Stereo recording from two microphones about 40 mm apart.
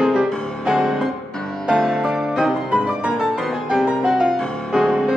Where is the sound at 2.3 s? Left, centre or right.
Centre.